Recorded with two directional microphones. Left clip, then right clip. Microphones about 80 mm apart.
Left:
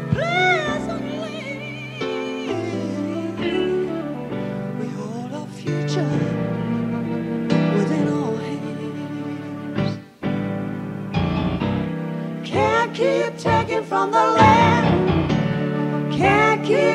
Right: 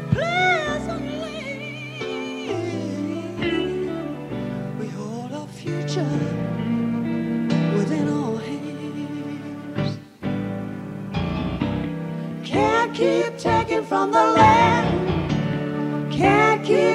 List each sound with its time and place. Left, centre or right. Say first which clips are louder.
0.1 s music: left 1 dB; left
2.4 s music: left 2 dB; left
5.7 s music: left 2 dB; left
9.8 s music: left 2 dB; left